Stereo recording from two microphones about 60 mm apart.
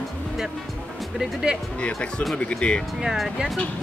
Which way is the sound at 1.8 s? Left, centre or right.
Centre.